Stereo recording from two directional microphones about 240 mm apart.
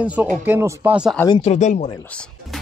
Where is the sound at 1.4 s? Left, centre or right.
Left.